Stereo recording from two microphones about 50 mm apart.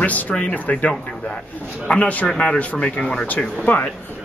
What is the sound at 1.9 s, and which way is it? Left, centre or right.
Speech, left.